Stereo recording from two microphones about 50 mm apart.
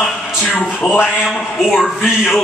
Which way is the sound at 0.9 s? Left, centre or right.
Left.